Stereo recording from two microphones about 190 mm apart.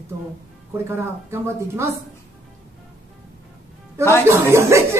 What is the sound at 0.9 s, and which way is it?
Speech, 15° right (ahead or behind).